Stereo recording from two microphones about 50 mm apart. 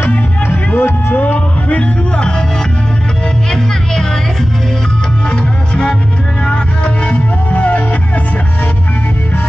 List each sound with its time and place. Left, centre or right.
0.1 s music: left
0.7 s music: left
1.2 s music: left
5.3 s music: centre